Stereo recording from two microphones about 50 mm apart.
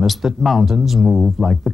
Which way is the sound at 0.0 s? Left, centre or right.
Centre.